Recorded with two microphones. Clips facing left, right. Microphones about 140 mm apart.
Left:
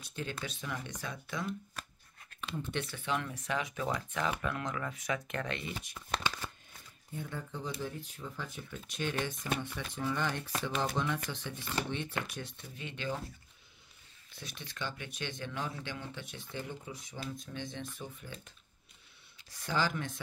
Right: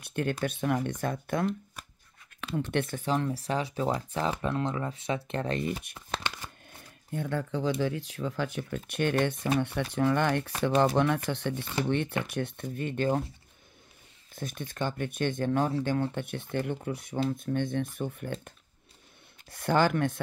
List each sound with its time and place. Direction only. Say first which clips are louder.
0.0 s speech: right 10 dB; 60° right (ahead or behind)
2.4 s speech: right 8 dB; 75° right (ahead or behind)
2.8 s speech: right 5 dB; 45° right (ahead or behind)
5.9 s shuffling cards: right 1 dB; 20° right (ahead or behind)
7.1 s speech: right 10 dB; 75° right (ahead or behind); by 13.2 s 50° right (ahead or behind)
14.3 s speech: right 10 dB; 50° right (ahead or behind)
19.5 s speech: right 9 dB; 60° right (ahead or behind)